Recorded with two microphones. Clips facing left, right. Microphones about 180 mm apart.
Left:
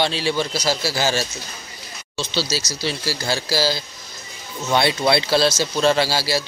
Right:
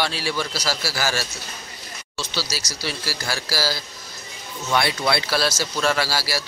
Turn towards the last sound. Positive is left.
turn(degrees=25)  # may be behind; listen again after turning